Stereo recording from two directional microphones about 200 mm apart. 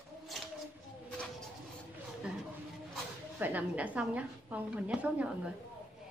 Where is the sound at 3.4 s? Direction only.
5° right (ahead or behind).